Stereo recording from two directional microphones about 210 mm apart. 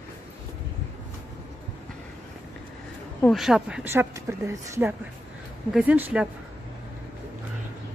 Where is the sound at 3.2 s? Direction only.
Centre (ahead or behind).